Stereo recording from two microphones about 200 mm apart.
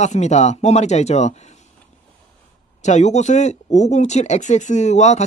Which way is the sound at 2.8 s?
35° left (ahead or behind).